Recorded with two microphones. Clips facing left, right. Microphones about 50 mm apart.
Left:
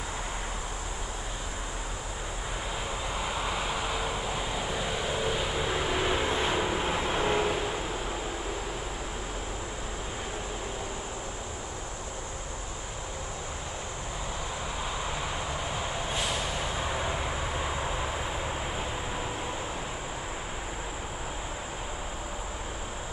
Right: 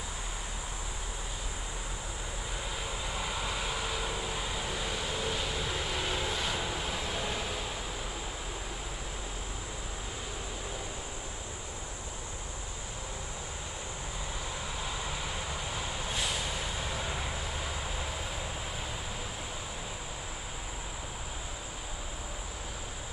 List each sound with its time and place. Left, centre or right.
3.2 s vehicle: centre; by 7.5 s left
15.7 s vehicle: centre